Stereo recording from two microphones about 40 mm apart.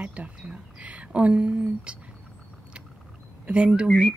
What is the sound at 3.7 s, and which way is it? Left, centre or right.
Speech, right.